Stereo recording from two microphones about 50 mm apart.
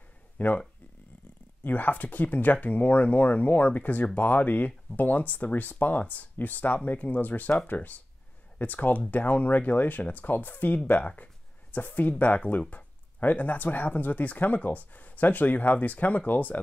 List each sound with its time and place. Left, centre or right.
0.4 s speech: left
1.6 s speech: left